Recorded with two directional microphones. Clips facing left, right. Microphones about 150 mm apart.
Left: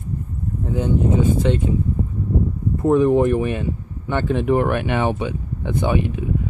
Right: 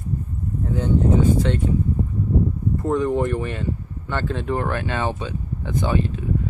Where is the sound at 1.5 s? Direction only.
15° left (ahead or behind).